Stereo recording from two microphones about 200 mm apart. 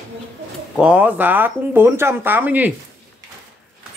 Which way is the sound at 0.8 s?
5° right (ahead or behind).